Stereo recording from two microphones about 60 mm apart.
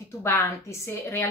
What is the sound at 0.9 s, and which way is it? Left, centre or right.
Speech, left.